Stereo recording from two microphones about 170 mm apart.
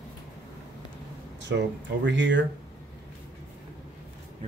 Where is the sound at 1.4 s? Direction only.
90° right.